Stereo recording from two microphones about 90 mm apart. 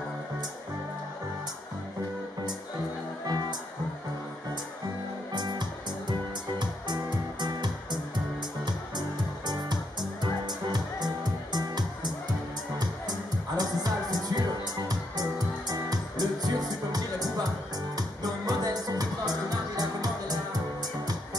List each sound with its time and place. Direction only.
5.3 s music: 55° right (ahead or behind)
9.5 s music: 50° right (ahead or behind)
13.6 s music: 50° right (ahead or behind)